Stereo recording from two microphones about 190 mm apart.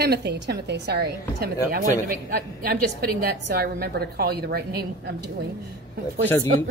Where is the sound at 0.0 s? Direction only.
60° right (ahead or behind).